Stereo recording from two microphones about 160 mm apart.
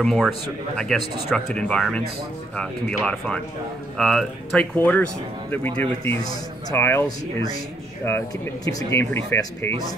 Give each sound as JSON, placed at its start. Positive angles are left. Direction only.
{"t": 0.0, "sound": "speech", "side_deg": 0}
{"t": 4.7, "sound": "speech", "side_deg": 10}
{"t": 6.2, "sound": "speech", "side_deg": 15}